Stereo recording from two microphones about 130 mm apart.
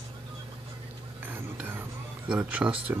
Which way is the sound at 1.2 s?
15° right (ahead or behind).